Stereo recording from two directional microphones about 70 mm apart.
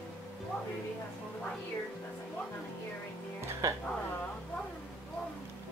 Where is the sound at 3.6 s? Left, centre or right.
Right.